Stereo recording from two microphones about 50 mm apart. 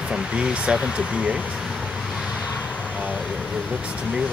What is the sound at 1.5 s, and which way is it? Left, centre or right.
Vehicle, centre.